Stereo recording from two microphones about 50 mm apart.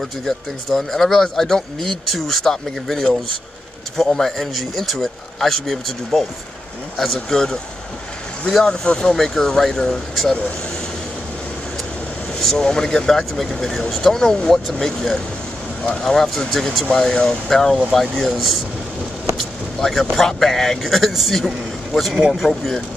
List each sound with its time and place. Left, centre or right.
0.2 s speech: centre
8.8 s speech: centre
12.4 s speech: centre